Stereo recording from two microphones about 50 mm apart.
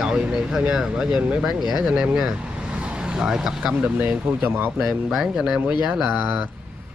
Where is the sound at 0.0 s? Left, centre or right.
Centre.